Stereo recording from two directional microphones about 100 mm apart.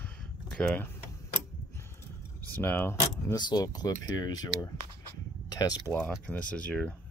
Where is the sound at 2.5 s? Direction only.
20° left (ahead or behind).